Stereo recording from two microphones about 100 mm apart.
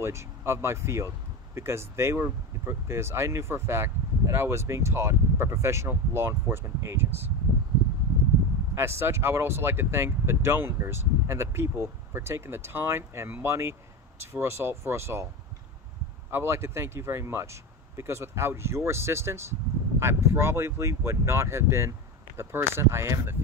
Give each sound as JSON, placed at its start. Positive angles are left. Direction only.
{"t": 0.0, "sound": "speech", "side_deg": -25}
{"t": 8.7, "sound": "speech", "side_deg": -25}
{"t": 16.3, "sound": "speech", "side_deg": -25}